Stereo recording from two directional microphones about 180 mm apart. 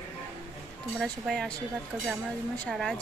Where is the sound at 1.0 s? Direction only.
Centre (ahead or behind).